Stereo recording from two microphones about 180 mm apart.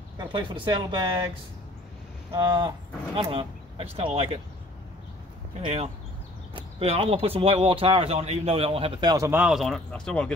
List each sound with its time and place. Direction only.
0.2 s speech: 25° right (ahead or behind)
2.3 s speech: 25° right (ahead or behind)
6.5 s speech: 30° right (ahead or behind)
9.4 s speech: centre (ahead or behind)